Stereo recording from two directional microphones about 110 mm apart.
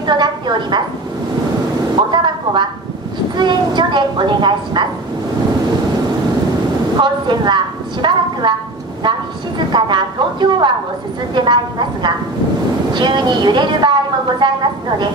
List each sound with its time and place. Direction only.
0.0 s a woman's voice: 45° right (ahead or behind)
2.0 s a sound: 45° right (ahead or behind)
3.3 s a woman's voice: 45° right (ahead or behind)
7.0 s a woman's voice: 45° right (ahead or behind)
9.7 s a woman's voice: 45° right (ahead or behind)